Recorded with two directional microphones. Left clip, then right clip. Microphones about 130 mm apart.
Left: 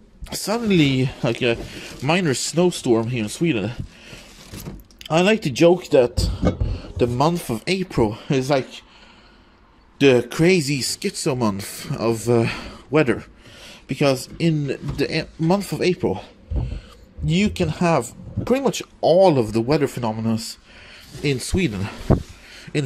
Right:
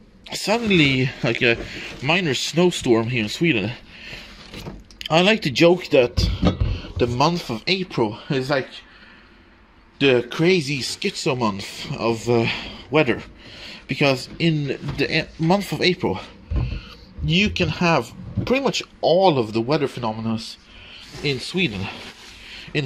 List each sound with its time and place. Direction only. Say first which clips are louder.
0.3 s speech: right 2 dB; 35° left (ahead or behind); by 1.8 s 15° left (ahead or behind)
1.8 s speech: even; 30° left (ahead or behind)
2.5 s speech: right 1 dB; 10° left (ahead or behind)
6.6 s a sound: left 1 dB; 15° left (ahead or behind)
7.2 s speech: even; 35° left (ahead or behind); by 8.8 s 55° left (ahead or behind)
9.9 s speech: left 2 dB; 40° left (ahead or behind)